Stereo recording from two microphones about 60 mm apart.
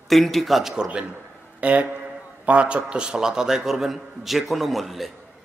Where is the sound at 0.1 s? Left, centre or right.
Centre.